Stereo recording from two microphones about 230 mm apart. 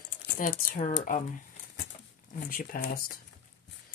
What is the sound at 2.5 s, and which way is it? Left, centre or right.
Speech, left.